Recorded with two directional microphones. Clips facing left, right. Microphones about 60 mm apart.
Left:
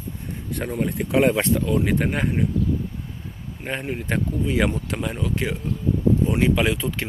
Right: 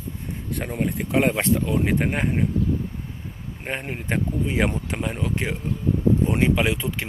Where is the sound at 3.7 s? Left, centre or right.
Right.